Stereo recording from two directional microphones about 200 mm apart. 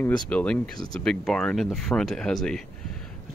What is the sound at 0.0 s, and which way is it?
Speech, 5° left (ahead or behind).